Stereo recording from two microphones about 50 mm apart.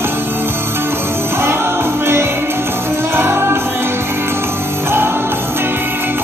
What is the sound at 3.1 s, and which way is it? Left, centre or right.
Music, right.